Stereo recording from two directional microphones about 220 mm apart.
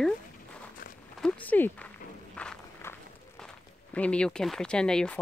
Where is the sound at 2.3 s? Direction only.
5° left (ahead or behind).